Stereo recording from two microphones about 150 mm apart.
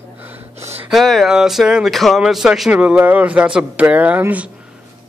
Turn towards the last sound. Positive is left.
turn(degrees=-10)  # may be behind; listen again after turning